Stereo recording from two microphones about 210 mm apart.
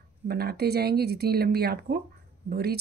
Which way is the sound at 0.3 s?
50° right (ahead or behind).